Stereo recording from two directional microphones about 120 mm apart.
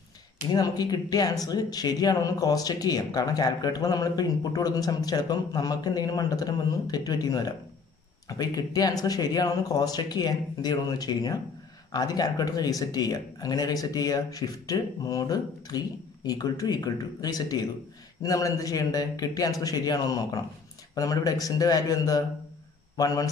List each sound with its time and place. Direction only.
0.5 s a man's voice: 35° left (ahead or behind)